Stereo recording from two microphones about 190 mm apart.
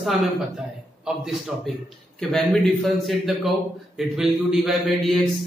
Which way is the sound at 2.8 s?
Centre (ahead or behind).